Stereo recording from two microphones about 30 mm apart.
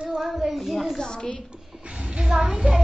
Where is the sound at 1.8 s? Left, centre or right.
Right.